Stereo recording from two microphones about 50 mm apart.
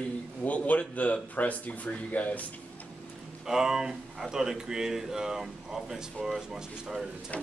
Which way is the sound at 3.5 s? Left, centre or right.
Centre.